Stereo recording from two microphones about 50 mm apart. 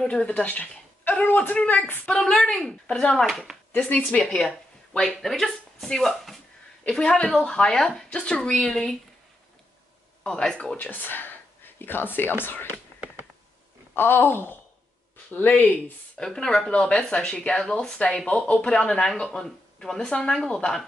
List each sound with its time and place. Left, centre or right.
0.0 s speech: centre
0.3 s a man's voice: left
2.0 s speech: centre
3.7 s speech: left
4.2 s speech: centre
6.9 s speech: centre
8.1 s speech: left
10.2 s speech: centre
10.8 s speech: left
13.9 s speech: left
16.2 s speech: centre